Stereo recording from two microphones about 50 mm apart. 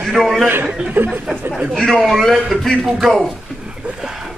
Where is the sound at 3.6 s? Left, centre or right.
Centre.